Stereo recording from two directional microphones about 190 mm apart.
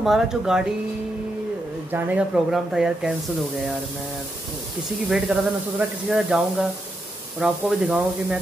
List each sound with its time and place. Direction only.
0.0 s speech: centre (ahead or behind)
1.9 s speech: 10° right (ahead or behind)
5.1 s speech: centre (ahead or behind)